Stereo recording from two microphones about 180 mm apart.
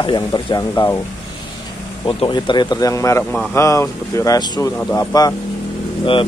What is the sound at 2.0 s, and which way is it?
Speech, 25° left (ahead or behind).